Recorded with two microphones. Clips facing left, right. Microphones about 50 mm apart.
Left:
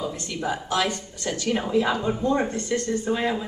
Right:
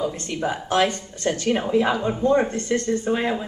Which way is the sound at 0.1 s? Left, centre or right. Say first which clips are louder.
Right 2 dB; right.